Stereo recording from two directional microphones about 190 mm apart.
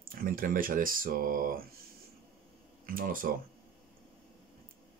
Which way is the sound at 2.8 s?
45° right (ahead or behind).